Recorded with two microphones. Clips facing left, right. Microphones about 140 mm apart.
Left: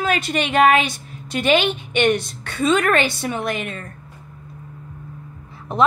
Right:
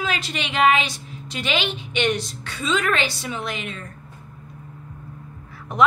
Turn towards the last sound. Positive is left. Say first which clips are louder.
# left 1 dB
turn(degrees=30)  # may be behind; listen again after turning